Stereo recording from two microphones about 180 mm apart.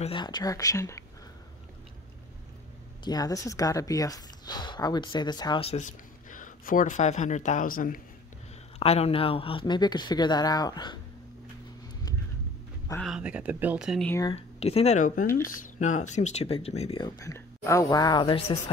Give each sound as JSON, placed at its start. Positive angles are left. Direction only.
{"t": 0.0, "sound": "speech", "side_deg": 25}
{"t": 3.0, "sound": "speech", "side_deg": 20}
{"t": 8.7, "sound": "speech", "side_deg": 35}
{"t": 13.0, "sound": "speech", "side_deg": -5}
{"t": 14.3, "sound": "speech", "side_deg": 35}
{"t": 17.0, "sound": "speech", "side_deg": 20}